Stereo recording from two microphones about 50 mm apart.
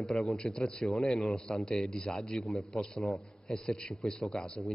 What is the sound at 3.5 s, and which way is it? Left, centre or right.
Speech, centre.